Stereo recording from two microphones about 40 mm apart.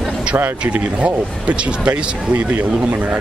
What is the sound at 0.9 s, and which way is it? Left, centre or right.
Speech, right.